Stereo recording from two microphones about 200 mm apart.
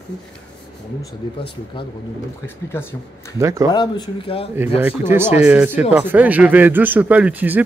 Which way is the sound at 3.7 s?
25° left (ahead or behind).